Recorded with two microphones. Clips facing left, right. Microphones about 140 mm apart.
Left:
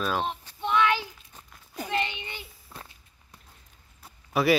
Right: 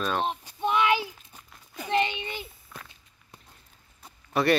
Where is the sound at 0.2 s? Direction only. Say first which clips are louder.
Right 3 dB; 15° right (ahead or behind).